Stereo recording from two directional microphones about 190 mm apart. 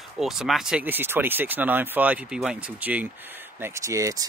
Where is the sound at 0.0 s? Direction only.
Centre (ahead or behind).